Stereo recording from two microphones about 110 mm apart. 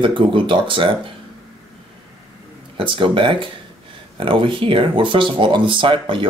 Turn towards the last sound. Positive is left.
turn(degrees=-50)  # may be behind; listen again after turning